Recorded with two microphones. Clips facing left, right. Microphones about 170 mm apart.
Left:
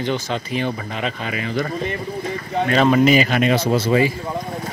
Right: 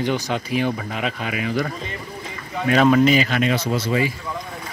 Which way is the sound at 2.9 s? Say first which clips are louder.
Left 2 dB; 10° left (ahead or behind).